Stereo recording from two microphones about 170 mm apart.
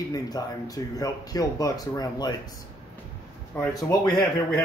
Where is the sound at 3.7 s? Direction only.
20° left (ahead or behind).